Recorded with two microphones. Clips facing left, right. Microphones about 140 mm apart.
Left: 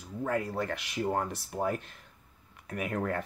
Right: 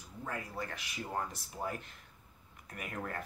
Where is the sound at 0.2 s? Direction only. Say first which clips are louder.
Left 9 dB; 80° left.